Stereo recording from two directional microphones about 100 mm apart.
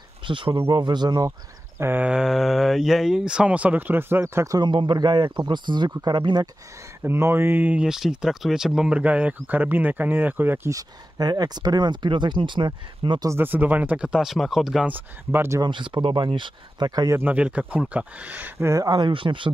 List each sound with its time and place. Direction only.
0.3 s speech: 55° right (ahead or behind)
0.7 s speech: 45° right (ahead or behind)
1.8 s speech: 20° right (ahead or behind)
2.0 s speech: 5° right (ahead or behind); by 4.6 s 25° right (ahead or behind)
4.6 s speech: 50° right (ahead or behind)
7.0 s speech: 25° right (ahead or behind)
10.7 s speech: 40° right (ahead or behind)
13.3 s speech: 20° right (ahead or behind); by 14.9 s centre (ahead or behind)
14.9 s speech: 20° right (ahead or behind)
15.6 s speech: 55° right (ahead or behind)
17.2 s speech: 15° right (ahead or behind)
18.7 s speech: 35° right (ahead or behind)
18.9 s speech: 55° right (ahead or behind)